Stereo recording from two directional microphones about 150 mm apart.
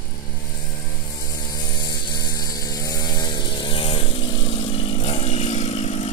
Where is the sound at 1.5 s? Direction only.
25° left (ahead or behind).